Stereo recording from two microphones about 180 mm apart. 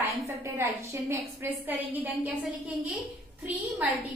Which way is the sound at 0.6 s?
15° right (ahead or behind).